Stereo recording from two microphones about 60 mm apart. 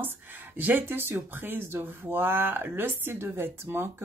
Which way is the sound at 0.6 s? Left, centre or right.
Right.